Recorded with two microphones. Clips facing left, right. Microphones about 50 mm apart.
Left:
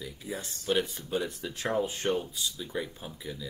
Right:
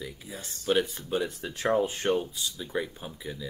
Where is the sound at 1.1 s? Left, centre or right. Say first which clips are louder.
Right 2 dB; centre.